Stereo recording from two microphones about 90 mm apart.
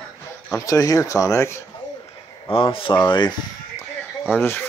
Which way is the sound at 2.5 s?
80° left.